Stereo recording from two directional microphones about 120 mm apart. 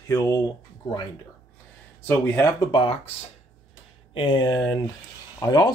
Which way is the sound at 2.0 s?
25° left (ahead or behind).